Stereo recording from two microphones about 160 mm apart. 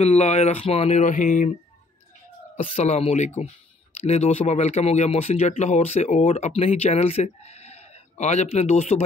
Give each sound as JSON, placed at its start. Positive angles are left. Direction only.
{"t": 0.0, "sound": "speech", "side_deg": 45}
{"t": 2.5, "sound": "speech", "side_deg": 40}